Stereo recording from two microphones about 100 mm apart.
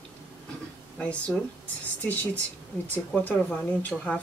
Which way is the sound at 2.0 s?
15° left (ahead or behind).